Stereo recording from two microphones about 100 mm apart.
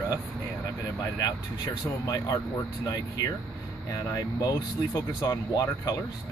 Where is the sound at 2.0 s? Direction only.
40° left (ahead or behind).